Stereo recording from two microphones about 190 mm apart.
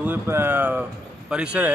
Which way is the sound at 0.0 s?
10° right (ahead or behind).